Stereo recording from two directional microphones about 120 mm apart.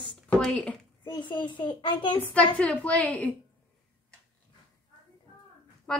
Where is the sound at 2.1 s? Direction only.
10° left (ahead or behind).